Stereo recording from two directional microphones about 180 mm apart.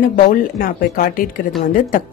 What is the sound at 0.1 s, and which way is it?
Speech, 50° left (ahead or behind).